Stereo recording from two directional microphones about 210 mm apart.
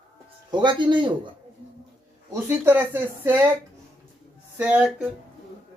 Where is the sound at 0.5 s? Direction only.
20° right (ahead or behind).